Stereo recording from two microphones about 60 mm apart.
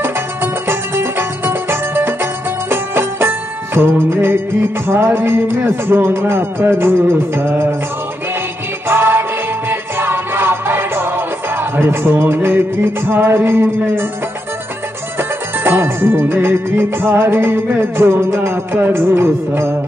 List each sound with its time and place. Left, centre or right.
0.0 s music: right
8.8 s music: right
15.1 s music: right